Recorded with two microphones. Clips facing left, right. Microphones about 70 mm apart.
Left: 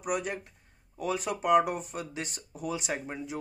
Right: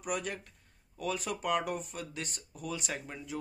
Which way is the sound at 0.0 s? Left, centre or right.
Centre.